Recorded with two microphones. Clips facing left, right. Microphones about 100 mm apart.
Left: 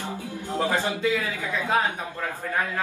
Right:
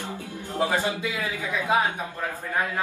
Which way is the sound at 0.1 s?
15° left (ahead or behind).